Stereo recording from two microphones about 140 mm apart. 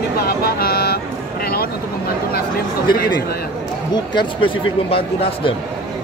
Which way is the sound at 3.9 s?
35° left (ahead or behind).